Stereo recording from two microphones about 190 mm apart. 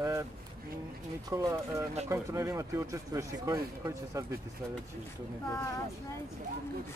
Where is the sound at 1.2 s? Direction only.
15° right (ahead or behind).